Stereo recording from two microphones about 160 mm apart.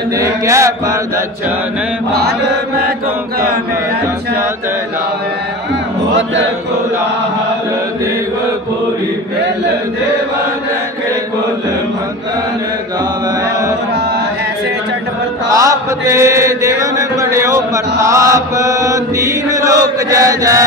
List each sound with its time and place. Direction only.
0.2 s chant: 20° right (ahead or behind)
15.5 s mantra: 20° right (ahead or behind)